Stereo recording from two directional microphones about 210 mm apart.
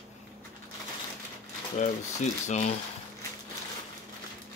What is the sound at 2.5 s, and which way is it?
Speech, 35° left (ahead or behind).